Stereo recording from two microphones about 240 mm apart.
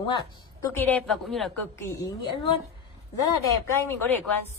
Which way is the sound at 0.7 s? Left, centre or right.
Centre.